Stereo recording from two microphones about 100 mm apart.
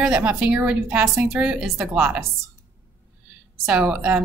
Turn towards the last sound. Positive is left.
turn(degrees=-10)  # may be behind; listen again after turning